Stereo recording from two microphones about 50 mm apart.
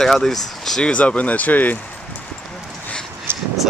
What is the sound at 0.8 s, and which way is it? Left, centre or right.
Speech, left.